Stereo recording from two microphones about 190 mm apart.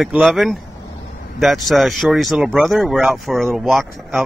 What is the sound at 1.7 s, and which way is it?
Speech, centre (ahead or behind).